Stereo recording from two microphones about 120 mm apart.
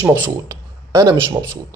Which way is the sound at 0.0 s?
15° right (ahead or behind).